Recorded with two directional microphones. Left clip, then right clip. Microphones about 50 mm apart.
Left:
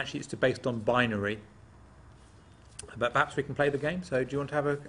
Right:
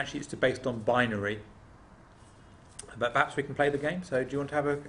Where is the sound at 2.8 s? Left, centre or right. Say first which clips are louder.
Even; centre.